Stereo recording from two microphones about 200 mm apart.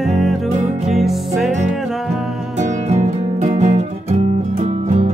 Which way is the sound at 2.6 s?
35° right (ahead or behind).